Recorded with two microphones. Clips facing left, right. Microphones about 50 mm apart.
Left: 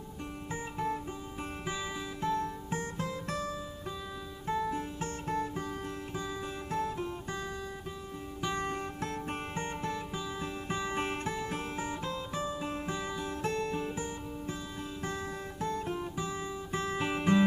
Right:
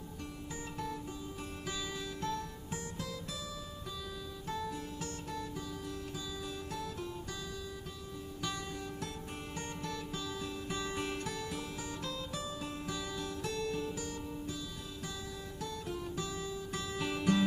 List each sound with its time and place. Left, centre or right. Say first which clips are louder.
1.7 s music: left 2 dB; left
4.5 s guitar: left 7 dB; left
6.7 s music: left 11 dB; left
8.5 s music: left 6 dB; left
15.6 s guitar: left 6 dB; left